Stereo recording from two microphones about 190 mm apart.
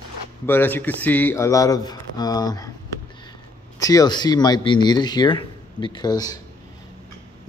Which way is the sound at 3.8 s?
20° left (ahead or behind).